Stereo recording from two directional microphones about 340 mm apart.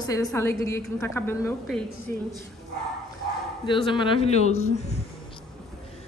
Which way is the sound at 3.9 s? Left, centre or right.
Centre.